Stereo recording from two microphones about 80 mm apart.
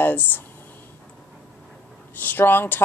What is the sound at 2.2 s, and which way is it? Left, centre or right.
Speech, left.